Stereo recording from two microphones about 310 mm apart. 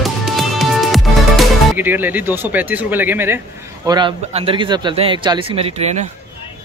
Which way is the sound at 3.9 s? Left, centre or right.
Centre.